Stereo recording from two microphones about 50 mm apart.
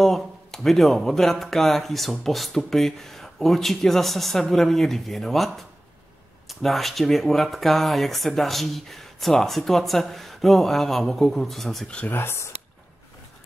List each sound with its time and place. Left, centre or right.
0.0 s speech: centre
12.1 s speech: left